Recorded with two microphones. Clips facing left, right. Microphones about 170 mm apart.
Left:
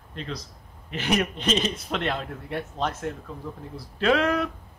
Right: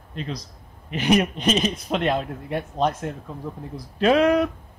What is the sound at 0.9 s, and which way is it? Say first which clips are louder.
A man's voice: right 5 dB; 15° right (ahead or behind).